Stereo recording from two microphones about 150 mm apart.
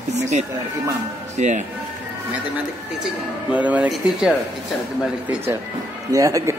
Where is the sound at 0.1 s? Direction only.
50° right (ahead or behind).